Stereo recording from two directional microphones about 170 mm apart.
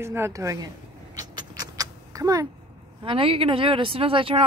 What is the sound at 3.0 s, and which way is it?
Speech, 30° right (ahead or behind).